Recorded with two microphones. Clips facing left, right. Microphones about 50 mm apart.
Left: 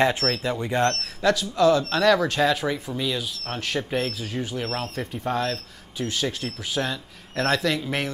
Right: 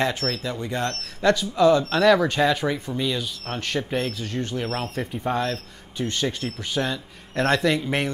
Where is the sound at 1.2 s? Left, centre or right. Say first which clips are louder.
Right 1 dB; centre.